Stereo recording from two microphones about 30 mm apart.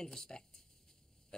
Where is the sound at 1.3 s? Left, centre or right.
Left.